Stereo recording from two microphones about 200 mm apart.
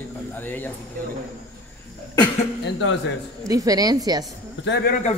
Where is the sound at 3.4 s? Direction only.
15° right (ahead or behind).